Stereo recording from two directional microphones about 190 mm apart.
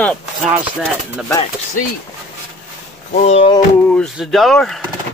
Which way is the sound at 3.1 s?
35° left (ahead or behind).